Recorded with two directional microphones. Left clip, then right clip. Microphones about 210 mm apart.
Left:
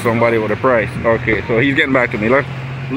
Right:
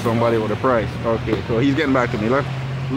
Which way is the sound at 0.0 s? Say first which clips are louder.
Left 4 dB; 5° left (ahead or behind).